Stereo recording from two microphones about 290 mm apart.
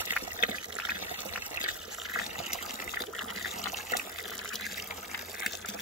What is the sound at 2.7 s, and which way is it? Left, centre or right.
Water, left.